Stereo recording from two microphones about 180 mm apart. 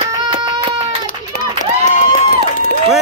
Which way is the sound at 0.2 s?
25° right (ahead or behind).